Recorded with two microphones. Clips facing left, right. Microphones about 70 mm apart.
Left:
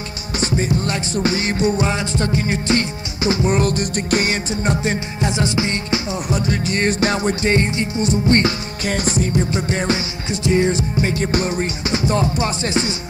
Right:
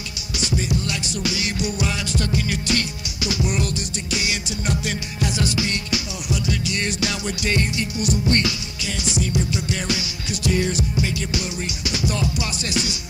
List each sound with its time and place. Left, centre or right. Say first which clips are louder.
0.4 s music: left 5 dB; left